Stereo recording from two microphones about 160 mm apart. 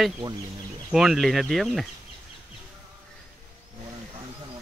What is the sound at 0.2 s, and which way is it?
Speech, 30° right (ahead or behind).